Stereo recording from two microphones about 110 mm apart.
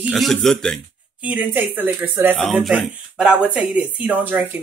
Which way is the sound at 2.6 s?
5° right (ahead or behind).